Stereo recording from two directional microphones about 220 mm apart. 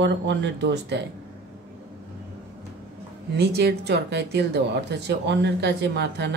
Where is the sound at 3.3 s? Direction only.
50° right (ahead or behind).